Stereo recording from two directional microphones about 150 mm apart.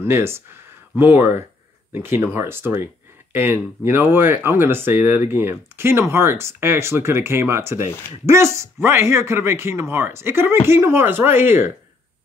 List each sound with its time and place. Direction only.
0.0 s speech: 15° right (ahead or behind)